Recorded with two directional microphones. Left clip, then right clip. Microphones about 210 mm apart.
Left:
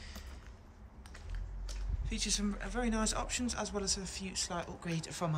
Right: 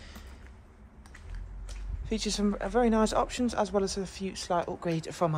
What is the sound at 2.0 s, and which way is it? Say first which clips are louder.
Speech: right 6 dB; centre (ahead or behind).